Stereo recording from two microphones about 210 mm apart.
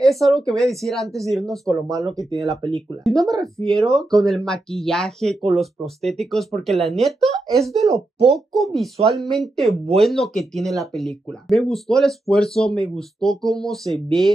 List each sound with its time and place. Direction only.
0.0 s speech: centre (ahead or behind)
1.7 s speech: 15° right (ahead or behind)
2.7 s speech: centre (ahead or behind)
3.3 s speech: 15° right (ahead or behind)
3.6 s speech: centre (ahead or behind)